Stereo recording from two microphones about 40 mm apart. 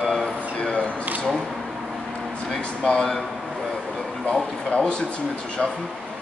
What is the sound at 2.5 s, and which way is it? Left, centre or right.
Speech, centre.